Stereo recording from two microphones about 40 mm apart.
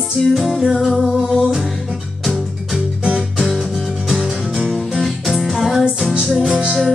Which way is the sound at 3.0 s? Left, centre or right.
Right.